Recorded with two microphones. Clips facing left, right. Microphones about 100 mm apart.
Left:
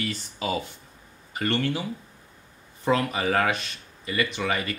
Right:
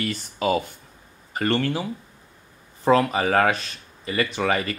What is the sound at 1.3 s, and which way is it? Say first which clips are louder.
Speech: right 3 dB; 40° right (ahead or behind).